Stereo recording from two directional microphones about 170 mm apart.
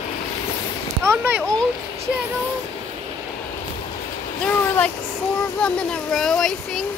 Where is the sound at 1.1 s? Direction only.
15° right (ahead or behind).